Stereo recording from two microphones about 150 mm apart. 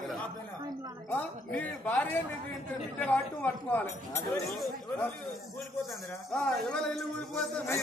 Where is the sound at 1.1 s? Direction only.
10° left (ahead or behind).